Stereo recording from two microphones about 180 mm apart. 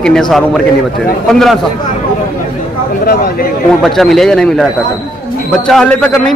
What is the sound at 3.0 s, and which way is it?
Speech, 60° left (ahead or behind).